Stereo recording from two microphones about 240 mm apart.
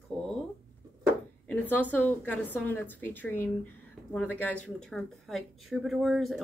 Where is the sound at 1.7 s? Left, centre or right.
Centre.